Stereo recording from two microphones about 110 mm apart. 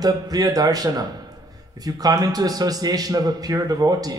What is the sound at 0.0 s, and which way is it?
A man's voice, 35° right (ahead or behind).